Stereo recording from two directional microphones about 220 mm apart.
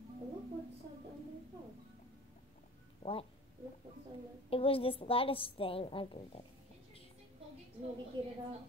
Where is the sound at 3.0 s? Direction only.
25° left (ahead or behind).